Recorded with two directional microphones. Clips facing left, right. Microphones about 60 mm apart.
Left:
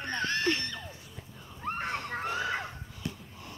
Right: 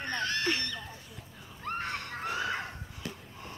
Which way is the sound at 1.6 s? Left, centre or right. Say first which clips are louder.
Left 2 dB; centre.